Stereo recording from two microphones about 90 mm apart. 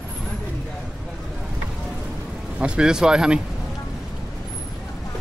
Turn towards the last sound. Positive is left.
turn(degrees=-10)  # may be behind; listen again after turning